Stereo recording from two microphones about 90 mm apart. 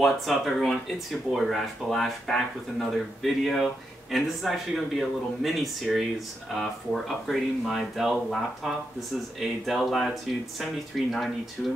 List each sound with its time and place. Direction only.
0.0 s a man's voice: centre (ahead or behind)